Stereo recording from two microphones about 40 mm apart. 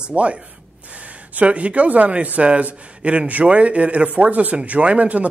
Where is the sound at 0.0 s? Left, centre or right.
Right.